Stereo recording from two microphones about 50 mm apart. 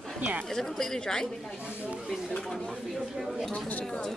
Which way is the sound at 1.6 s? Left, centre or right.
Centre.